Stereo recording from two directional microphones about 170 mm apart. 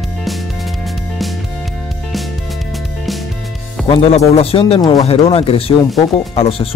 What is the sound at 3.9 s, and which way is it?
Speech, 35° left (ahead or behind).